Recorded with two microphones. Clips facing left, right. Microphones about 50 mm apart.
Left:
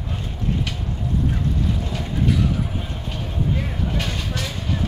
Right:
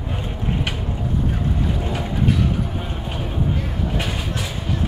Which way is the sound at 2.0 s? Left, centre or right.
Centre.